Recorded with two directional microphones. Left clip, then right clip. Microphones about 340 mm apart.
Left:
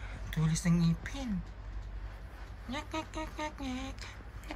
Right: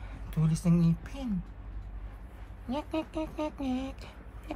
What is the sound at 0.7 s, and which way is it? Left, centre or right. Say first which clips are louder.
Speech: right 3 dB; centre.